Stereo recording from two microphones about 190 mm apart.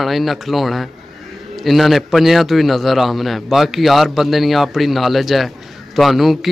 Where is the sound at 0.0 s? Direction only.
Centre (ahead or behind).